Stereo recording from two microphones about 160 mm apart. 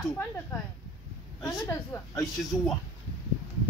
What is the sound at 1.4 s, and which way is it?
Speech, 20° left (ahead or behind).